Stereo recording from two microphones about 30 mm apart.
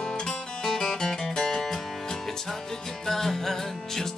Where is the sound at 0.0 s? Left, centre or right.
Left.